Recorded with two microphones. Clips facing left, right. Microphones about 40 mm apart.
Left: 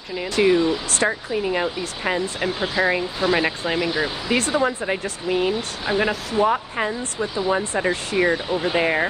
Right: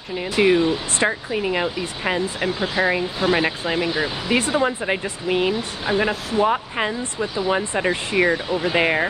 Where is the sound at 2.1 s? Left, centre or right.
Right.